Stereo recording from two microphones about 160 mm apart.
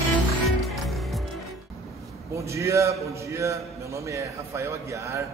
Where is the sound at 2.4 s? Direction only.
20° right (ahead or behind).